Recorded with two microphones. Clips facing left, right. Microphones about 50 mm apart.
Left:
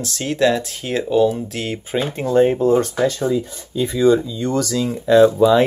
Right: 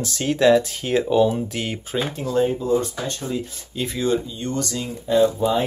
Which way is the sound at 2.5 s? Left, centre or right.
Left.